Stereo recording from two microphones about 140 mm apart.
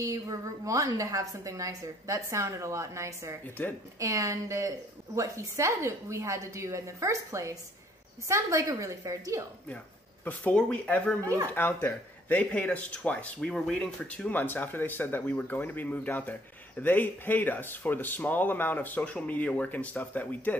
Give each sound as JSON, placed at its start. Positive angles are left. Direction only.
{"t": 0.0, "sound": "a woman's voice", "side_deg": -25}
{"t": 3.4, "sound": "speech", "side_deg": 15}
{"t": 4.0, "sound": "a woman's voice", "side_deg": -20}
{"t": 10.2, "sound": "speech", "side_deg": 10}